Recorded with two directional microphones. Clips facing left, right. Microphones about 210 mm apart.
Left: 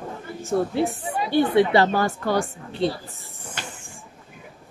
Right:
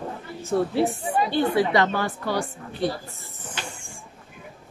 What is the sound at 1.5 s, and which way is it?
Speech, 35° left (ahead or behind).